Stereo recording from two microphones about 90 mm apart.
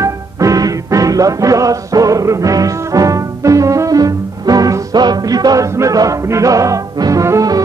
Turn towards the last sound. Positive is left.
turn(degrees=-40)  # may be behind; listen again after turning